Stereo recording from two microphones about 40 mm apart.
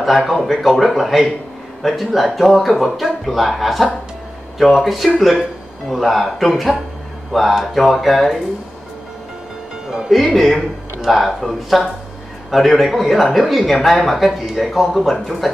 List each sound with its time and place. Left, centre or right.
0.3 s speech: centre
9.8 s speech: centre
10.1 s speech: centre